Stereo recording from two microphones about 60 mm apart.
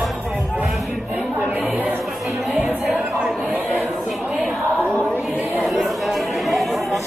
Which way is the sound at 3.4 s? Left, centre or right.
Right.